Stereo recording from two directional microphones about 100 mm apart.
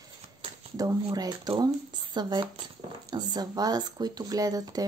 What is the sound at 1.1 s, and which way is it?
Speech, 45° right (ahead or behind).